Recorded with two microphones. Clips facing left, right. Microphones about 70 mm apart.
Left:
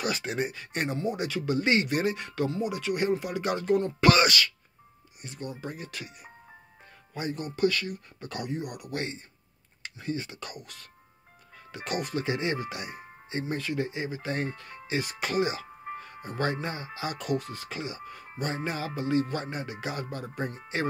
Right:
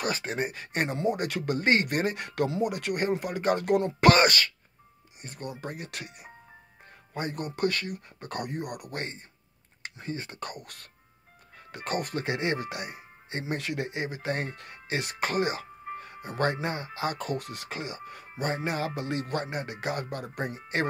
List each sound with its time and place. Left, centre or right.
0.0 s speech: right
3.6 s speech: right
13.3 s speech: right
15.2 s music: right
16.3 s speech: right
17.4 s speech: right
17.6 s speech: right
18.9 s speech: right